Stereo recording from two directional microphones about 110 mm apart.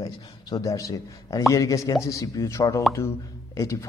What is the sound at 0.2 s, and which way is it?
A man's voice, 35° left (ahead or behind).